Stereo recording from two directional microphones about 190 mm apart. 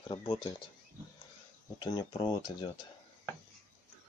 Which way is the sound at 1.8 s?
25° left (ahead or behind).